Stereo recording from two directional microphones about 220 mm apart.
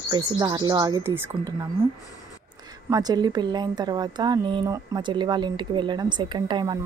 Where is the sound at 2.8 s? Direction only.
15° right (ahead or behind).